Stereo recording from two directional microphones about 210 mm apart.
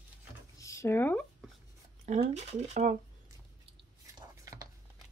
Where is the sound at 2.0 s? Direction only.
30° right (ahead or behind).